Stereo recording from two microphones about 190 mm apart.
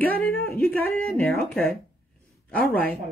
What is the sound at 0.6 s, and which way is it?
Speech, 5° left (ahead or behind).